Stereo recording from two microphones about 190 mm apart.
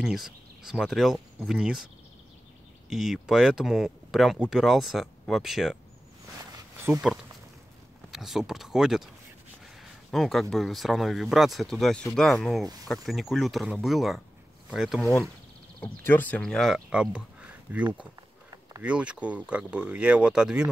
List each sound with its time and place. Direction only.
0.0 s speech: centre (ahead or behind)
2.9 s speech: centre (ahead or behind)
6.3 s a sound: 15° right (ahead or behind)
8.1 s speech: centre (ahead or behind)
9.8 s a sound: centre (ahead or behind)
10.5 s speech: centre (ahead or behind)
15.8 s speech: 10° left (ahead or behind)